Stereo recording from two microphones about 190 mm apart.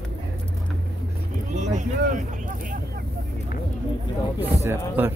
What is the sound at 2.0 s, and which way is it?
Speech, 45° right (ahead or behind).